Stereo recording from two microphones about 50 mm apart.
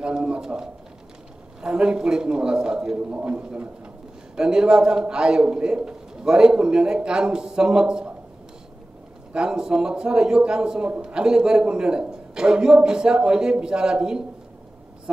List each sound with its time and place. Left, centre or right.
0.0 s a man's voice: centre
9.3 s a man's voice: centre